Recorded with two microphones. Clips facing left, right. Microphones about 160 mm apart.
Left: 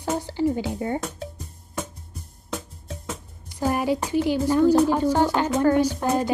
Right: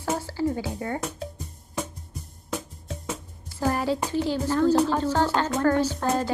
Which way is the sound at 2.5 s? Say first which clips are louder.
Even; 5° right (ahead or behind).